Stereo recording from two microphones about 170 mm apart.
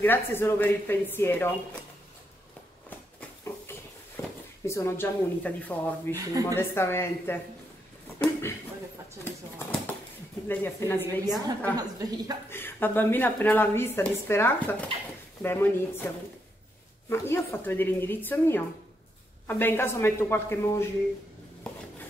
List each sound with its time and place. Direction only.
0.0 s a woman's voice: 10° left (ahead or behind)
4.2 s a sound: 15° left (ahead or behind)
4.6 s a woman's voice: 15° left (ahead or behind)
11.7 s speech: 20° right (ahead or behind)
12.4 s a woman's voice: 15° left (ahead or behind)
17.1 s a woman's voice: 15° left (ahead or behind)
21.7 s a sound: 5° left (ahead or behind)